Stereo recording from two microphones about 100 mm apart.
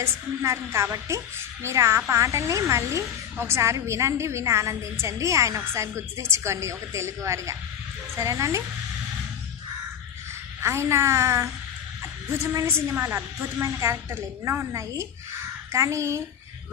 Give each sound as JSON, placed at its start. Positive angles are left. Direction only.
{"t": 0.0, "sound": "a woman's voice", "side_deg": -30}
{"t": 10.6, "sound": "a woman's voice", "side_deg": -30}